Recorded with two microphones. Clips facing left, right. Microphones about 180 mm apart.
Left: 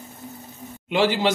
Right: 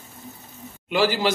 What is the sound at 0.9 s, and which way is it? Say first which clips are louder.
Speech: left 1 dB; 20° left (ahead or behind).